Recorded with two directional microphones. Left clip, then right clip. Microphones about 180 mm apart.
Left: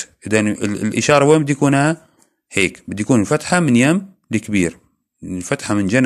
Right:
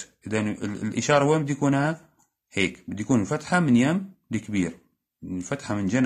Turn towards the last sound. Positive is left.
turn(degrees=35)  # may be behind; listen again after turning